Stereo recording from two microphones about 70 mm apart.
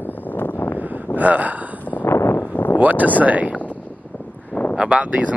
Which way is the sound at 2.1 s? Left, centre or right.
Left.